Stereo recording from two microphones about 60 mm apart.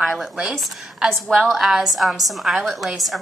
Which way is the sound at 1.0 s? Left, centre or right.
Centre.